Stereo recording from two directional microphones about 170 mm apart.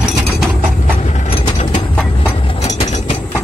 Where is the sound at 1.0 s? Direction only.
40° left (ahead or behind).